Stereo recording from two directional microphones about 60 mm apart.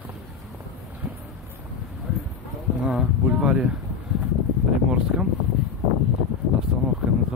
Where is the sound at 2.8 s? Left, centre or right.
Centre.